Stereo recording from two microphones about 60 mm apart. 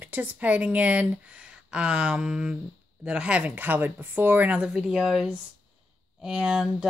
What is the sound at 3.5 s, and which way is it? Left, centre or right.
Speech, right.